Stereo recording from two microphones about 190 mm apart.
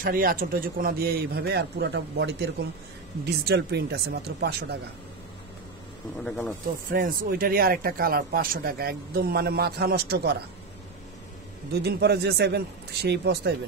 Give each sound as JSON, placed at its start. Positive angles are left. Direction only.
{"t": 0.0, "sound": "a man's voice", "side_deg": -50}
{"t": 6.2, "sound": "speech", "side_deg": 5}
{"t": 6.9, "sound": "speech", "side_deg": -50}
{"t": 11.7, "sound": "a man's voice", "side_deg": -60}